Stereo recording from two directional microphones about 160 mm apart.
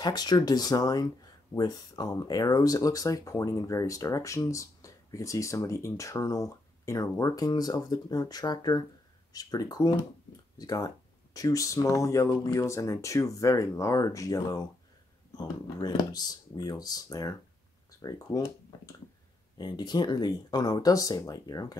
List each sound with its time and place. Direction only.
0.0 s speech: 25° left (ahead or behind)